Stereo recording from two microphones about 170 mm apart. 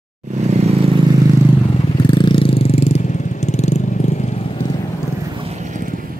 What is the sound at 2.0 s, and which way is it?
Vehicle, 30° left (ahead or behind).